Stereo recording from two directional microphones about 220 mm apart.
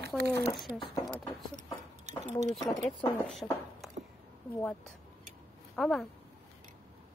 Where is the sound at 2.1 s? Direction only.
30° right (ahead or behind).